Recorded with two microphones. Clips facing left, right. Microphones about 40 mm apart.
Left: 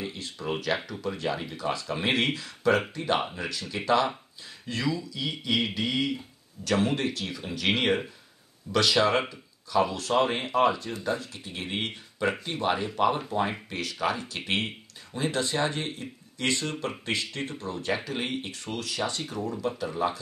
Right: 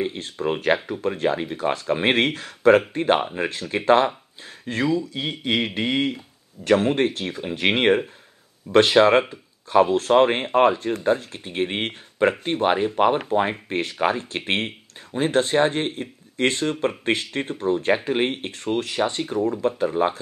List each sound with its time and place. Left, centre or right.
0.0 s speech: right